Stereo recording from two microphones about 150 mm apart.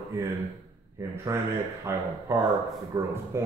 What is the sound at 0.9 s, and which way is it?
Speech, 20° right (ahead or behind).